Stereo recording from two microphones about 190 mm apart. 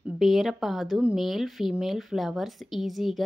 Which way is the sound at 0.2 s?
Centre (ahead or behind).